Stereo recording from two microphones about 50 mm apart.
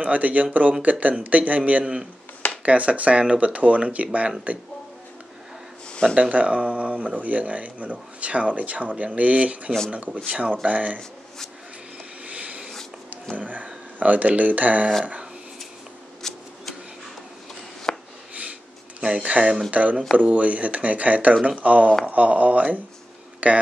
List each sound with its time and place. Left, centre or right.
0.0 s speech: right
6.1 s speech: right
11.0 s speech: centre
12.3 s a sound: right
13.9 s speech: right
16.2 s shuffling cards: centre
17.9 s a sound: centre
18.3 s a sound: right
19.2 s speech: right